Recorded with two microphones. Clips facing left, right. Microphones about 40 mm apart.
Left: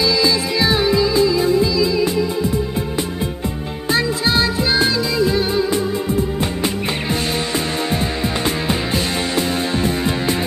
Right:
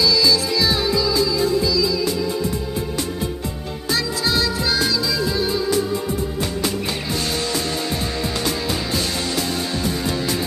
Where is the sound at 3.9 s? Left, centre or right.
Left.